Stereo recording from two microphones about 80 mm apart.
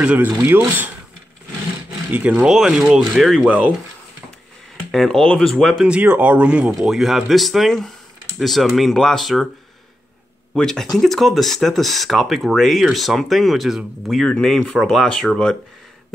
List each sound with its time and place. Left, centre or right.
0.0 s speech: centre
2.0 s speech: right
2.4 s speech: centre
3.4 s speech: centre
4.9 s speech: centre
5.9 s speech: centre
6.7 s speech: centre
10.5 s speech: centre